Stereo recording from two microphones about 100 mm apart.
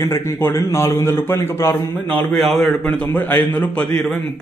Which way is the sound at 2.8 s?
20° left (ahead or behind).